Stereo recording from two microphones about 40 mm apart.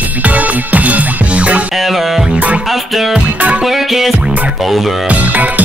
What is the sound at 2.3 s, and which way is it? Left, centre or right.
Music, right.